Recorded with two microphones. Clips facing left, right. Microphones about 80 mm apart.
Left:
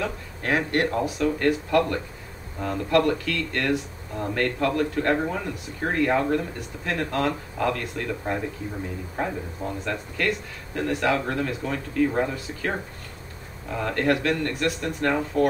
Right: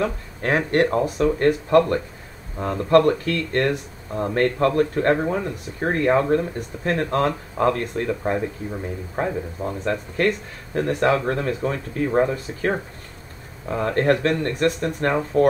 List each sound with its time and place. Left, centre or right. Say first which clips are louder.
0.0 s speech: right 5 dB; right
13.7 s speech: right 4 dB; right